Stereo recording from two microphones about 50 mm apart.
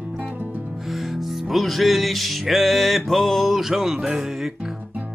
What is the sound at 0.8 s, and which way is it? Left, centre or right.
Music, centre.